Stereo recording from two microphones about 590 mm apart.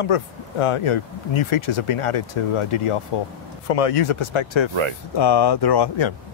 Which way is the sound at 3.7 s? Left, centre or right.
Left.